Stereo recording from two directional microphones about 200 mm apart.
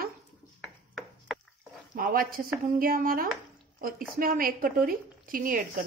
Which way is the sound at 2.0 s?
45° right (ahead or behind).